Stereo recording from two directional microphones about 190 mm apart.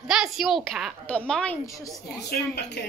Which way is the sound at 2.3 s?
60° left (ahead or behind).